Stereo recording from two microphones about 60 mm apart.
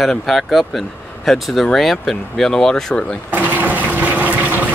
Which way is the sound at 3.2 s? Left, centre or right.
Right.